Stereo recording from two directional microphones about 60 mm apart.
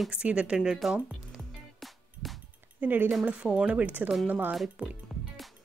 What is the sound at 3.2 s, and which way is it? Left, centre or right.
Speech, centre.